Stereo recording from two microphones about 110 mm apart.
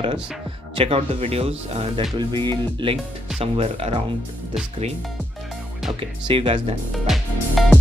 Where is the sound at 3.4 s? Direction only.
65° right (ahead or behind).